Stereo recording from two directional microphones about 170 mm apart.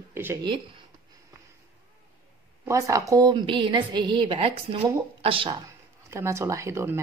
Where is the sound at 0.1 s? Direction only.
15° right (ahead or behind).